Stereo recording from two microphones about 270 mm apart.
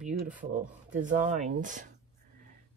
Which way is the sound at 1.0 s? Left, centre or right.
Right.